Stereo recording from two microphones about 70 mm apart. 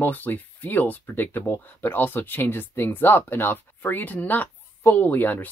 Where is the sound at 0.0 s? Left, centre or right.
Left.